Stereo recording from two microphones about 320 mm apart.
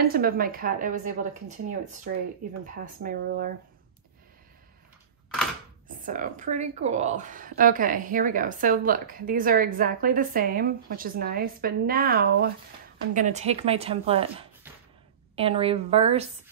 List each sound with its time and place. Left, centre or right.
0.0 s speech: right
6.0 s speech: right
15.3 s a woman's voice: centre